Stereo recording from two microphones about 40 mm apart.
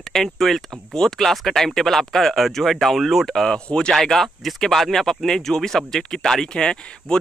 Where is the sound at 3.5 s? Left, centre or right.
Centre.